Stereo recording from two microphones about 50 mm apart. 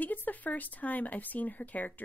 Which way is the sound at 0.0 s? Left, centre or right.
Left.